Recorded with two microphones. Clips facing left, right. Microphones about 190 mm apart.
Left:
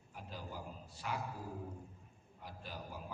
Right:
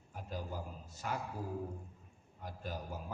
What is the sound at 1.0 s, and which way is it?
Speech, 45° right (ahead or behind).